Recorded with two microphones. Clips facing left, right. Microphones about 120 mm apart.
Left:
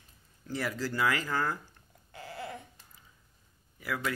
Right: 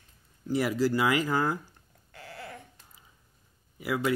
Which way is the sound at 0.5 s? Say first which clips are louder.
Right 8 dB; 15° right (ahead or behind).